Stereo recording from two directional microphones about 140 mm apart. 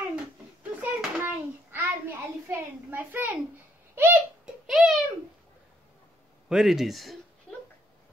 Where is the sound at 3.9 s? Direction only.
15° right (ahead or behind).